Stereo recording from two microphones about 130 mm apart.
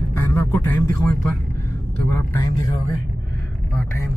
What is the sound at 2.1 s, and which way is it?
Speech, 25° left (ahead or behind).